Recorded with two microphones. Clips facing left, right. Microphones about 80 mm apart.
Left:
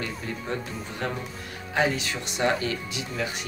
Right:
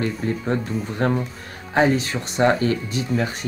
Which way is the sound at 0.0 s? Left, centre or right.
Right.